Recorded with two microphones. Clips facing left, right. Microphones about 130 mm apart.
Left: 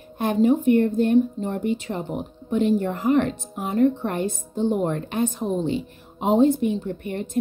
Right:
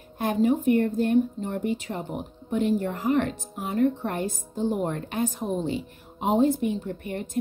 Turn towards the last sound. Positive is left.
turn(degrees=25)  # may be behind; listen again after turning